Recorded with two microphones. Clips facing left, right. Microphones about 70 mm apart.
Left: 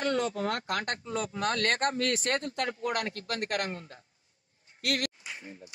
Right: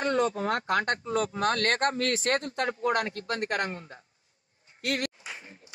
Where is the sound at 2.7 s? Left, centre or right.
Right.